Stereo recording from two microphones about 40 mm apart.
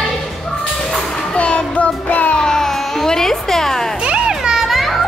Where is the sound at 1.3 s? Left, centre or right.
Left.